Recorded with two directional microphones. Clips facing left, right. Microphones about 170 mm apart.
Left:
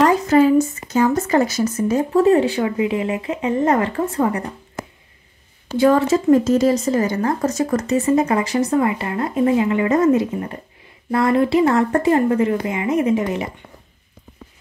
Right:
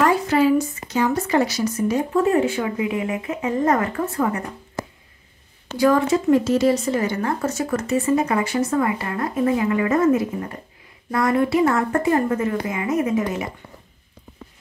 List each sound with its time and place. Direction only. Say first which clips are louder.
0.0 s speech: left 4 dB; 45° left (ahead or behind)
2.2 s speech: left 4 dB; 35° left (ahead or behind)
5.7 s speech: left 3 dB; 30° left (ahead or behind)
6.3 s speech: left 3 dB; 45° left (ahead or behind)
8.0 s speech: left 2 dB; 25° left (ahead or behind)
11.1 s speech: left 3 dB; 25° left (ahead or behind)